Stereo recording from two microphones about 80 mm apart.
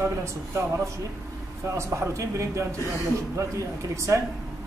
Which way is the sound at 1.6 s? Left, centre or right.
Right.